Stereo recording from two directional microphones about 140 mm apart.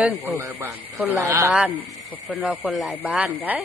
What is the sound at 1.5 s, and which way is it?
Speech, 5° right (ahead or behind).